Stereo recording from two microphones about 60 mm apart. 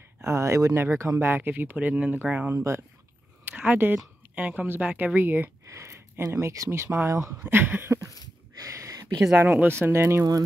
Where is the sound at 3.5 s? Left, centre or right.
Right.